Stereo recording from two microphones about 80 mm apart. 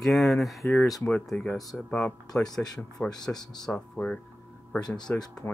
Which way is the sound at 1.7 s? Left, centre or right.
Centre.